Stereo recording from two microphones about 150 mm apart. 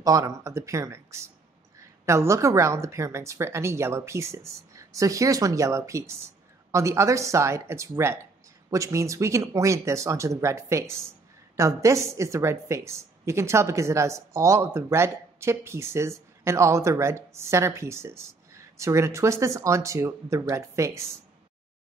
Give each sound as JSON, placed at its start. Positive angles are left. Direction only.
{"t": 0.0, "sound": "a woman's voice", "side_deg": -20}